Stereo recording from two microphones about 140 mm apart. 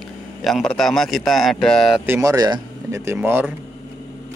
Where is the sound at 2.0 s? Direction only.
20° right (ahead or behind).